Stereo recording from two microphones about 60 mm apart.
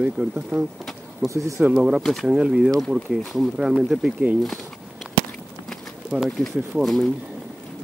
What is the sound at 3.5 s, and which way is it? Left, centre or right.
Speech, centre.